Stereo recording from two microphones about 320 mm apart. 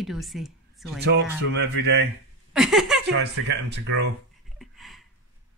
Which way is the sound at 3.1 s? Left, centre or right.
Right.